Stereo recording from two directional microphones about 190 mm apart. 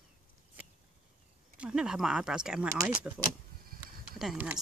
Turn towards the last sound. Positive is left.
turn(degrees=-5)  # may be behind; listen again after turning